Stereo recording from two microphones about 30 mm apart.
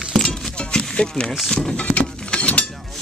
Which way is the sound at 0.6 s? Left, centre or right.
Left.